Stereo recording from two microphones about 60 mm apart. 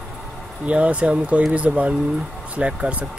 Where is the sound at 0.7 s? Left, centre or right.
Right.